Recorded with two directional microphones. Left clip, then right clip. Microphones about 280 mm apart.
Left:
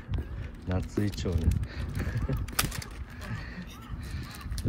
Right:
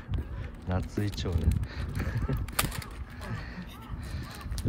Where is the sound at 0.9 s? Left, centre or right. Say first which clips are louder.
Left 2 dB; centre.